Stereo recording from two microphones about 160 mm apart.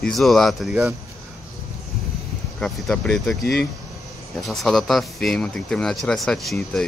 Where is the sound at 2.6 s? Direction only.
5° left (ahead or behind).